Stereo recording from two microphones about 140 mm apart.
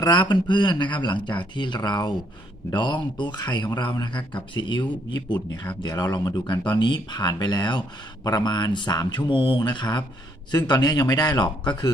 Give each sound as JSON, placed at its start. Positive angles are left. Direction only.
{"t": 0.0, "sound": "speech", "side_deg": 30}